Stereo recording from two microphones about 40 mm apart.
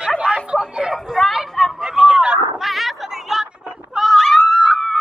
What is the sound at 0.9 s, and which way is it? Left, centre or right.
Speech, centre.